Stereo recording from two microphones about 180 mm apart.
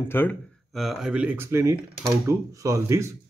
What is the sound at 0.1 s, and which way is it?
Speech, 10° left (ahead or behind).